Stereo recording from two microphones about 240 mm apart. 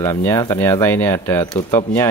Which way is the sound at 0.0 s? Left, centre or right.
Centre.